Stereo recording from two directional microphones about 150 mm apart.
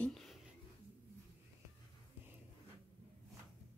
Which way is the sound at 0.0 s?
Centre (ahead or behind).